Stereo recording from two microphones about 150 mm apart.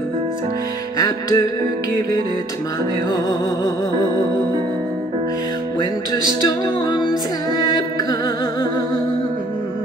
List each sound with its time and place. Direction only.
0.9 s music: 25° left (ahead or behind)
3.1 s music: 25° left (ahead or behind)
6.4 s music: 25° left (ahead or behind)